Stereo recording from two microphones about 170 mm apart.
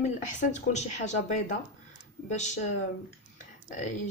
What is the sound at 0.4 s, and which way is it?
Speech, 45° left (ahead or behind).